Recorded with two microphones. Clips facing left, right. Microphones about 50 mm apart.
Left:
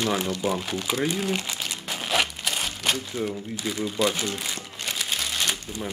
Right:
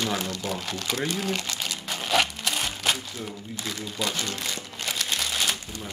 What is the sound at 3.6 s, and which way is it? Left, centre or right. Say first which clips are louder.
Crumpling: left 6 dB; centre.